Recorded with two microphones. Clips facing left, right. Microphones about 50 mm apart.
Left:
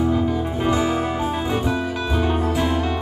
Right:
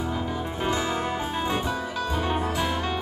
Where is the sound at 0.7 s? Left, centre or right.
Centre.